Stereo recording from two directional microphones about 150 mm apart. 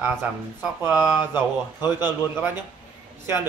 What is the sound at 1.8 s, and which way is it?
Speech, 25° left (ahead or behind).